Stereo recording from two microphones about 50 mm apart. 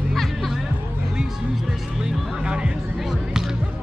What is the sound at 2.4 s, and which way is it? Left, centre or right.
Music, centre.